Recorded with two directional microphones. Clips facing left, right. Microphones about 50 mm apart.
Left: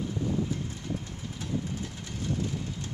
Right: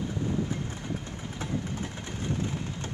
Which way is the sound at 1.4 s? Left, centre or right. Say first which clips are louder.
Even; right.